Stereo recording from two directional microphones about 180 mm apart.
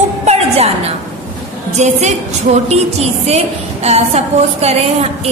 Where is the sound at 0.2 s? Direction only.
35° right (ahead or behind).